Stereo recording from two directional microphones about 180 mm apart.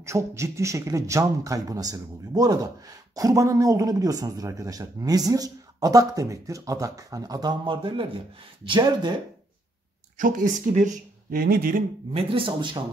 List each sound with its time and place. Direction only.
0.0 s speech: 15° right (ahead or behind)
10.1 s speech: 45° right (ahead or behind)
12.1 s speech: 30° right (ahead or behind)